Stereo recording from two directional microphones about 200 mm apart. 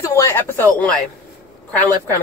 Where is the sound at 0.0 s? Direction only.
15° left (ahead or behind).